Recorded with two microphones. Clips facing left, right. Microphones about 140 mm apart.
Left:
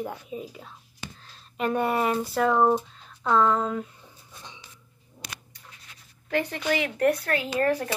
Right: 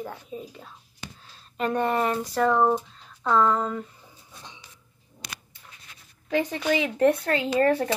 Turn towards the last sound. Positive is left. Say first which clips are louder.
# right 3 dB
turn(degrees=-25)  # may be behind; listen again after turning